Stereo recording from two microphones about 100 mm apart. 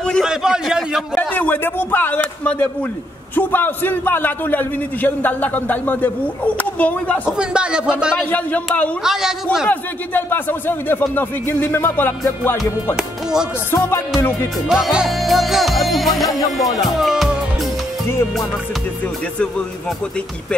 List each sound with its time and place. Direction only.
0.2 s a sound: 5° right (ahead or behind)
1.1 s a man's voice: 20° left (ahead or behind)
7.2 s speech: 10° right (ahead or behind)
8.3 s speech: 15° left (ahead or behind)
9.0 s music: 5° right (ahead or behind)
9.7 s a man's voice: 20° left (ahead or behind)
12.9 s speech: 5° right (ahead or behind)
13.7 s a man's voice: 25° left (ahead or behind)
14.7 s music: 5° right (ahead or behind)